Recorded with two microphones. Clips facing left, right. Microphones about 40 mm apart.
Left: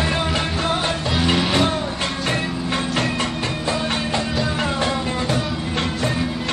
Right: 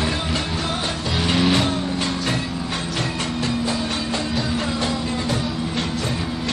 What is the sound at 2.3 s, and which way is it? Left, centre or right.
Music, left.